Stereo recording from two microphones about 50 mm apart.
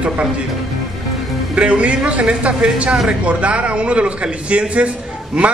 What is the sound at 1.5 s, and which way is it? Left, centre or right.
A man's voice, right.